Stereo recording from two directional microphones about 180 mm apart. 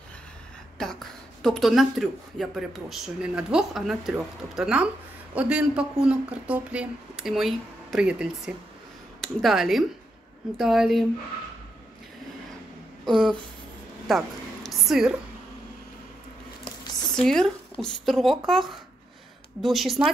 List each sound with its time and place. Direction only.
0.7 s speech: centre (ahead or behind)
14.0 s a sound: centre (ahead or behind)
17.1 s a woman's voice: centre (ahead or behind)